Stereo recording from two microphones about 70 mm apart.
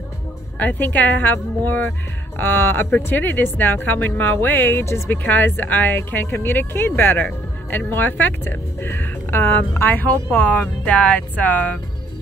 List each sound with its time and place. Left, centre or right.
0.6 s speech: left
5.1 s speech: left